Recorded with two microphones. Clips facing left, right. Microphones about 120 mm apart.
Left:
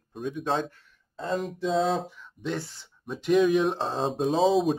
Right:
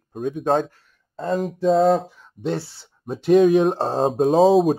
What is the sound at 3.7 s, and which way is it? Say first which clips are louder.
Speech: right 7 dB; 45° right (ahead or behind).